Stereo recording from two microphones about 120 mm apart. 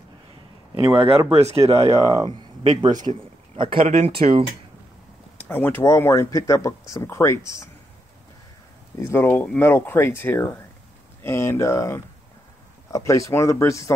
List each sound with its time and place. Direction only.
0.9 s speech: 55° right (ahead or behind)
1.9 s a man's voice: 30° right (ahead or behind)
3.1 s a sound: 45° right (ahead or behind)
3.8 s speech: 55° right (ahead or behind)
5.4 s speech: 15° left (ahead or behind)
9.0 s speech: 20° left (ahead or behind)